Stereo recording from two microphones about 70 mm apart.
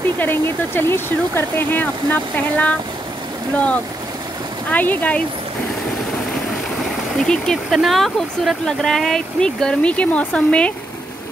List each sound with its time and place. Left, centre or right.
0.2 s speech: left
7.2 s speech: centre